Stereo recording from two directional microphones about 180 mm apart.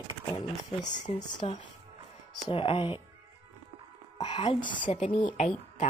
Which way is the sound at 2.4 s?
30° left (ahead or behind).